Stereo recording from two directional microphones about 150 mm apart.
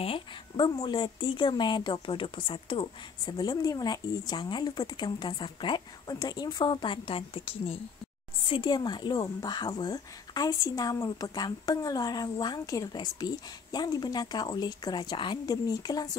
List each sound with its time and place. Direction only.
0.0 s a woman's voice: 35° left (ahead or behind)